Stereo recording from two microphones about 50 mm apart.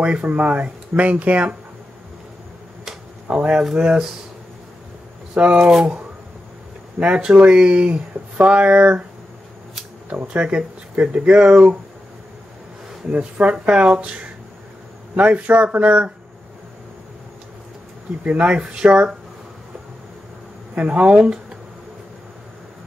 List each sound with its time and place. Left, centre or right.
0.0 s speech: right
3.3 s speech: right
5.3 s speech: right
7.0 s speech: right
10.3 s speech: right
13.1 s speech: right
18.2 s speech: right
20.7 s speech: right